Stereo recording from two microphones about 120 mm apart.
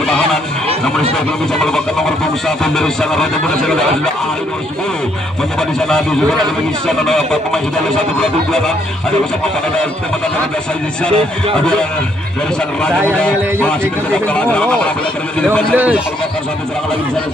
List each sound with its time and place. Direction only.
0.0 s honk: 5° left (ahead or behind)
1.1 s speech: 5° left (ahead or behind)
5.6 s speech: 5° left (ahead or behind)
7.1 s speech: 5° left (ahead or behind)
13.2 s speech: 10° left (ahead or behind)
15.7 s a man's voice: 15° right (ahead or behind)